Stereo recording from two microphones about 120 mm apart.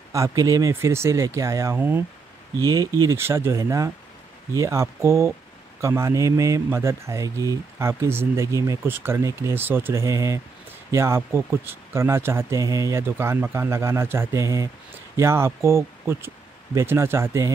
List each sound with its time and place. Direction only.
0.1 s a man's voice: 25° right (ahead or behind)
2.6 s a man's voice: 30° right (ahead or behind)